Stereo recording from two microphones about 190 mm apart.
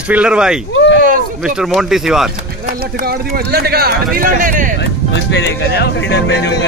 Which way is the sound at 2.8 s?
55° right (ahead or behind).